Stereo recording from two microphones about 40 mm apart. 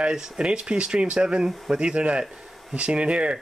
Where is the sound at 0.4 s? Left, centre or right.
Right.